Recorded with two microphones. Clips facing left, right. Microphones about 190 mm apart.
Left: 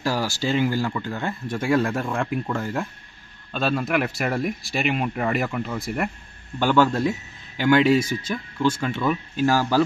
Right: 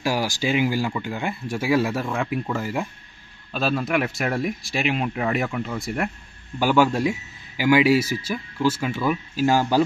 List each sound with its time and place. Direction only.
0.0 s speech: 15° right (ahead or behind)
6.6 s speech: 10° right (ahead or behind)
9.5 s speech: 20° right (ahead or behind)